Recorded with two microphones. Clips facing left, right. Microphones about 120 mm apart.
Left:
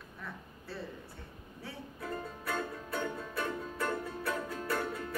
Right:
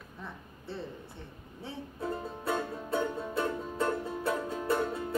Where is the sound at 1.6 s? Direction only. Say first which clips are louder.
Right 5 dB; 25° right (ahead or behind).